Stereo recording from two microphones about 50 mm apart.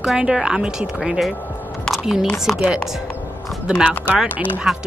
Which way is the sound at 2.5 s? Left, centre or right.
Centre.